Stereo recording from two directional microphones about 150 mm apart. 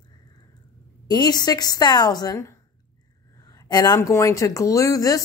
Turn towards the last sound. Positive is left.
turn(degrees=25)  # may be behind; listen again after turning